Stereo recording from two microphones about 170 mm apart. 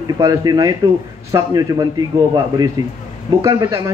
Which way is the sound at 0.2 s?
20° right (ahead or behind).